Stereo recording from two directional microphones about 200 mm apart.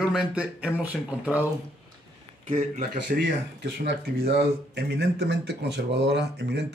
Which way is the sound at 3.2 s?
60° right (ahead or behind).